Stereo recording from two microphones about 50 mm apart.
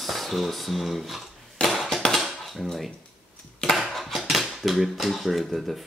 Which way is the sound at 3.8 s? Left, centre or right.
Centre.